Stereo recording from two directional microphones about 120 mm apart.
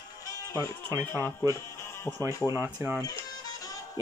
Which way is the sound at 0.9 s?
20° right (ahead or behind).